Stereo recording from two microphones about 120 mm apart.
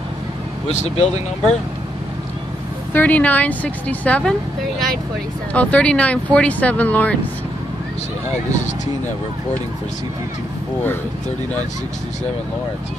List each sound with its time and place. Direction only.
0.7 s speech: 65° left (ahead or behind)
2.9 s speech: 15° left (ahead or behind)